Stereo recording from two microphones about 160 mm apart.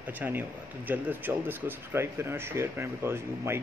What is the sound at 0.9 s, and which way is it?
Speech, 10° right (ahead or behind).